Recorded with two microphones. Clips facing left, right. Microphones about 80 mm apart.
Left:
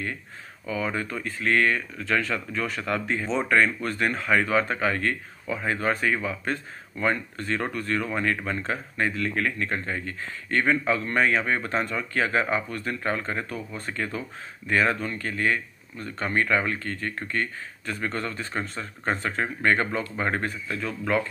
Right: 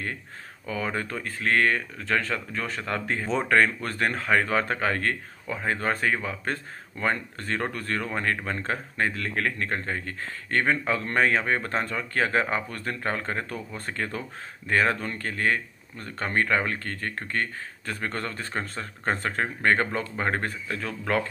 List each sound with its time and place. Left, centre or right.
0.7 s speech: right